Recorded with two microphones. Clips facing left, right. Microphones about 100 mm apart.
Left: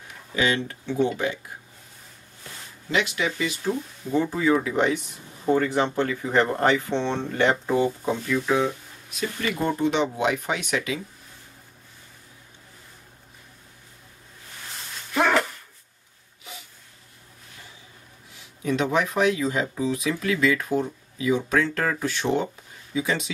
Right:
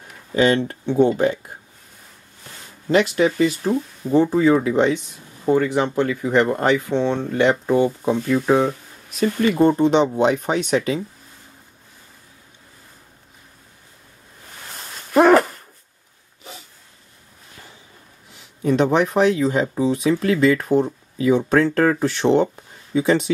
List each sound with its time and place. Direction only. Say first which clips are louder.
0.3 s speech: right 7 dB; 40° right (ahead or behind)
2.9 s speech: right 8 dB; 40° right (ahead or behind); by 8.2 s 20° right (ahead or behind)
8.3 s speech: right 6 dB; 45° right (ahead or behind)
9.6 s speech: right 7 dB; 30° right (ahead or behind)
15.1 s a sound: right 9 dB; 45° right (ahead or behind)
18.6 s speech: right 6 dB; 35° right (ahead or behind)